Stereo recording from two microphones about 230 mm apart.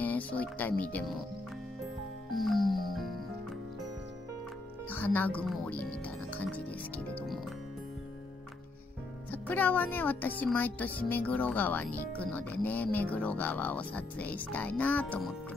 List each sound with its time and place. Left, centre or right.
0.0 s speech: centre
2.3 s music: centre
4.8 s speech: centre
9.3 s speech: centre